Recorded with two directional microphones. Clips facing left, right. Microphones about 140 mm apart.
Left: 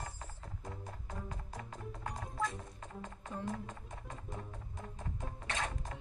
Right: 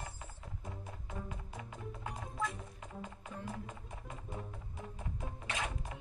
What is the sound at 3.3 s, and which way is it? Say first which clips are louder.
Music: left 6 dB; 40° left (ahead or behind).